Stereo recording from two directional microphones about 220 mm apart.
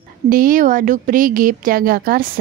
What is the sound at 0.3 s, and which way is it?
Speech, 40° right (ahead or behind).